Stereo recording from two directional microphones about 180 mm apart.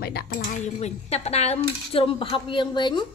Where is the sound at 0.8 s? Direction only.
35° left (ahead or behind).